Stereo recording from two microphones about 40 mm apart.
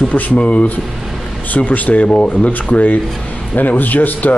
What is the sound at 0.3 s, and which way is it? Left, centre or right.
Speech, left.